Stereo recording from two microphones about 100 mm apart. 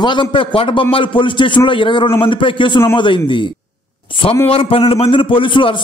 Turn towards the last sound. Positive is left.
turn(degrees=60)  # may be behind; listen again after turning